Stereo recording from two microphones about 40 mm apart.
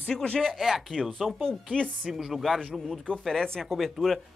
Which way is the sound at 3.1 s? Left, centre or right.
Left.